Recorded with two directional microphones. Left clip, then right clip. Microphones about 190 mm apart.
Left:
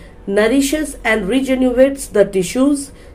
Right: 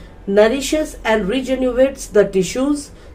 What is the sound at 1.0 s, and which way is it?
A woman's voice, 30° left (ahead or behind).